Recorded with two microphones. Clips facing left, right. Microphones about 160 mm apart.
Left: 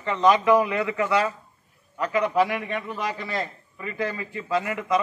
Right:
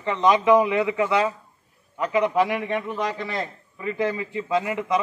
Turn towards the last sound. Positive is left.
turn(degrees=-20)  # may be behind; listen again after turning